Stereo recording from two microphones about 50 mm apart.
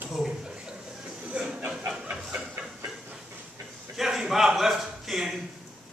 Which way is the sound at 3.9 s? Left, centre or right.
Centre.